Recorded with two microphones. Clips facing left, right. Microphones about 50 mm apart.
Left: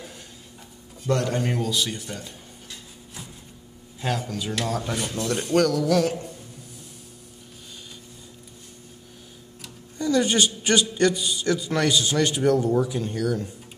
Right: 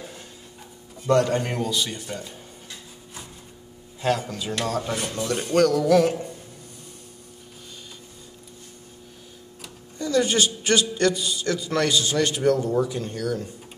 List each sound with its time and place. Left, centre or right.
1.0 s speech: centre
4.0 s a man's voice: centre
9.9 s a man's voice: centre